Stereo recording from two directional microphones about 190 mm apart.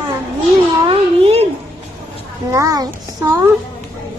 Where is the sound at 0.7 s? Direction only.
30° right (ahead or behind).